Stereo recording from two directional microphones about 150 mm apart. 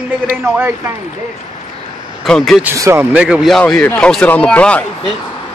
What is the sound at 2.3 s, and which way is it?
Speech, centre (ahead or behind).